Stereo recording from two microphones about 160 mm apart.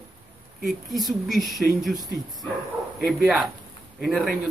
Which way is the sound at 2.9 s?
Centre (ahead or behind).